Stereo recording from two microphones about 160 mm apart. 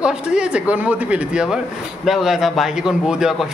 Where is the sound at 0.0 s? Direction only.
5° right (ahead or behind).